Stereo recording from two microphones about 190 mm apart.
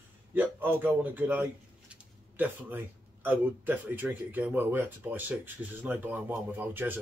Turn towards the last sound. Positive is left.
turn(degrees=-10)  # may be behind; listen again after turning